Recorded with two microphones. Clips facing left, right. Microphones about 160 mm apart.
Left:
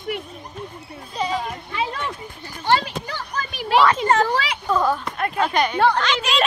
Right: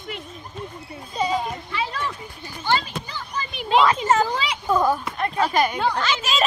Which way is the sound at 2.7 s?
70° left (ahead or behind).